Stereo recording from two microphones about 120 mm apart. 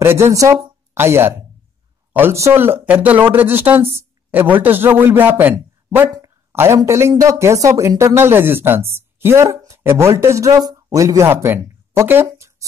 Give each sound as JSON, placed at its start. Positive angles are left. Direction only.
{"t": 0.0, "sound": "a woman's voice", "side_deg": -20}